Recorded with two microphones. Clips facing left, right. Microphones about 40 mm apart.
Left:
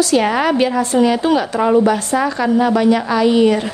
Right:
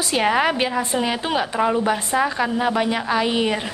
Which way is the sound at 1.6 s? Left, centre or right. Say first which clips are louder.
Left 7 dB; centre.